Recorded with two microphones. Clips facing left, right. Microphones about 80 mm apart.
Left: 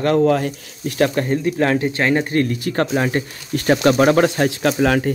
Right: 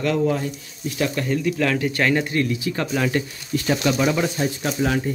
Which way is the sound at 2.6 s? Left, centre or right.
Left.